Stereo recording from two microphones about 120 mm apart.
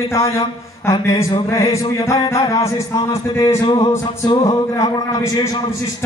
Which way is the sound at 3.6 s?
40° left (ahead or behind).